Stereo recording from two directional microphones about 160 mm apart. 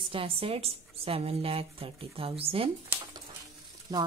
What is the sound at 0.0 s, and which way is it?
Speech, 35° right (ahead or behind).